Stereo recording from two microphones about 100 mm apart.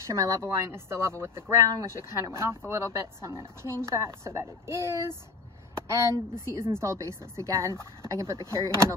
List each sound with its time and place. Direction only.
0.0 s a woman's voice: 35° right (ahead or behind)